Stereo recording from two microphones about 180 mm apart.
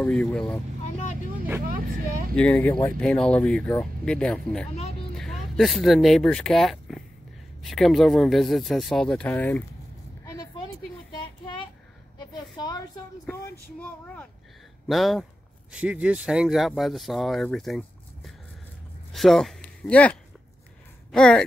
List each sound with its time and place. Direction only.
0.0 s speech: 5° left (ahead or behind)
2.3 s speech: 10° left (ahead or behind)
12.5 s a woman's voice: 20° left (ahead or behind)
13.3 s speech: 10° left (ahead or behind)